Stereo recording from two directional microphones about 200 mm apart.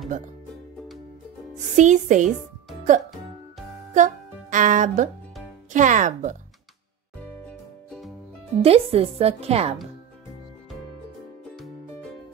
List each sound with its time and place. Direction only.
1.5 s speech: 35° right (ahead or behind)
3.9 s a child's voice: 40° right (ahead or behind)
8.6 s a woman's voice: 30° right (ahead or behind)
11.5 s music: centre (ahead or behind)